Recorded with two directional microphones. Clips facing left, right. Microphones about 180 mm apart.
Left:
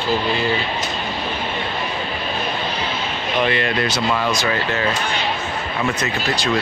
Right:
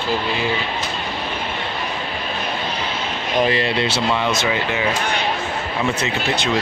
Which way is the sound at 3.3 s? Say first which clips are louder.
Right 1 dB; 35° right (ahead or behind).